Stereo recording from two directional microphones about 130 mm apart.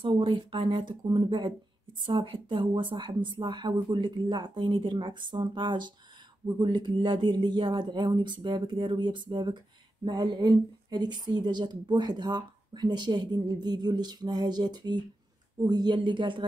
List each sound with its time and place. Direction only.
0.0 s a woman's voice: 40° right (ahead or behind)